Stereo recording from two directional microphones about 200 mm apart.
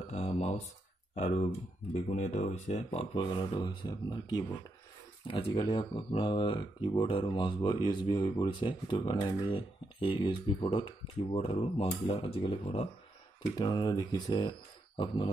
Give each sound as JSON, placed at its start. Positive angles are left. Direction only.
{"t": 0.1, "sound": "speech", "side_deg": 30}